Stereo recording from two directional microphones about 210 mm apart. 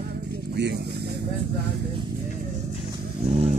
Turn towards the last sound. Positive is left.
turn(degrees=-30)  # may be behind; listen again after turning